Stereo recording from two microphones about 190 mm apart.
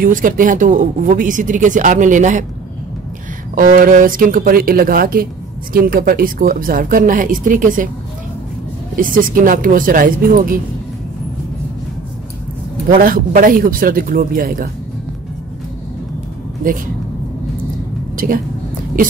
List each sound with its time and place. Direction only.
0.0 s speech: 45° right (ahead or behind)
3.5 s speech: 45° right (ahead or behind)
8.9 s speech: 45° right (ahead or behind)
12.9 s speech: 50° right (ahead or behind)